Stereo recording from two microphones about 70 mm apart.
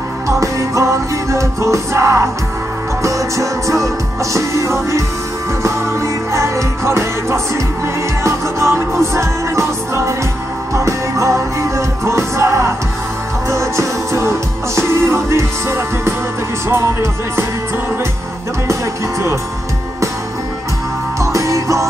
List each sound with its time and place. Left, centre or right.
0.3 s music: right
21.2 s music: right